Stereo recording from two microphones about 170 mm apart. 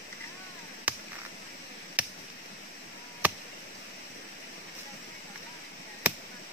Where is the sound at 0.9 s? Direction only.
10° right (ahead or behind).